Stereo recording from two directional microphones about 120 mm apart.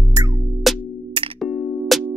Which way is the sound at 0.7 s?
Centre (ahead or behind).